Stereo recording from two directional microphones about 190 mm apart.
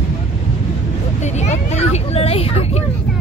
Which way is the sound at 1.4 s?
35° left (ahead or behind).